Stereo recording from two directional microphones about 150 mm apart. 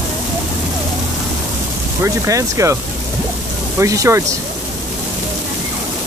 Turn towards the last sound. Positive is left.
turn(degrees=-20)  # may be behind; listen again after turning